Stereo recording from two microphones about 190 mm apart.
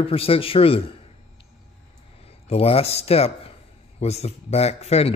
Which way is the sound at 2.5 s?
30° left (ahead or behind).